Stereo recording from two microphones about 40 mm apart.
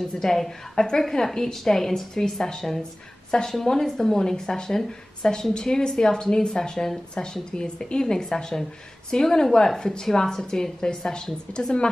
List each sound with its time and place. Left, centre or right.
0.2 s a woman's voice: centre